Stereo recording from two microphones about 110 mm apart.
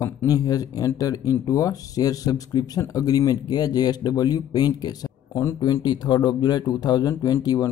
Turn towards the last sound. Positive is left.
turn(degrees=35)  # may be behind; listen again after turning